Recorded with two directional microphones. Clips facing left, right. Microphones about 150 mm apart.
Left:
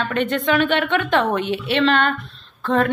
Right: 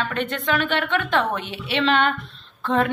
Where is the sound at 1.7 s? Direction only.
15° right (ahead or behind).